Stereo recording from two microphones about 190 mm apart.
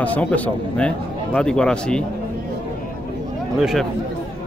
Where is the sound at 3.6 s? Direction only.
Centre (ahead or behind).